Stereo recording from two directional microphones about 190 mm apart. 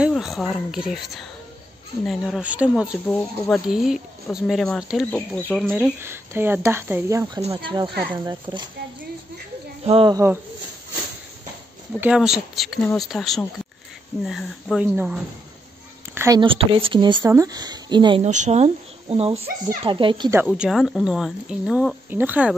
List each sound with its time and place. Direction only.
0.0 s speech: centre (ahead or behind)
5.7 s a woman's voice: 10° right (ahead or behind)
9.8 s a woman's voice: 30° right (ahead or behind)
10.1 s speech: 15° right (ahead or behind)
12.0 s speech: 5° right (ahead or behind)
16.3 s a woman's voice: 25° right (ahead or behind)
18.2 s a woman's voice: 40° right (ahead or behind)
20.2 s speech: 10° right (ahead or behind)